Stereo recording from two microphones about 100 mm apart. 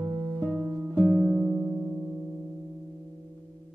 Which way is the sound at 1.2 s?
5° left (ahead or behind).